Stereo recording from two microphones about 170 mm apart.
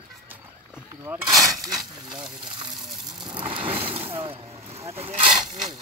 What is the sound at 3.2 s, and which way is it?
Vehicle, 30° right (ahead or behind).